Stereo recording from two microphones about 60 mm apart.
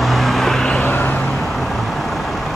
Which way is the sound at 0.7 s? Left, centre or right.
Left.